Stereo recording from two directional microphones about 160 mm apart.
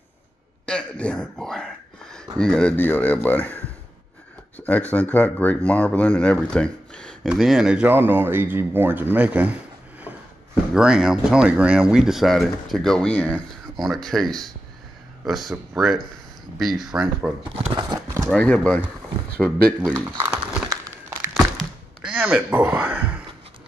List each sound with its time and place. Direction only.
0.7 s a sound: 5° left (ahead or behind)
2.3 s speech: 5° left (ahead or behind)
10.7 s speech: 5° right (ahead or behind)
17.4 s speech: 30° right (ahead or behind)
18.3 s speech: 5° left (ahead or behind)
22.0 s a man's voice: 10° right (ahead or behind)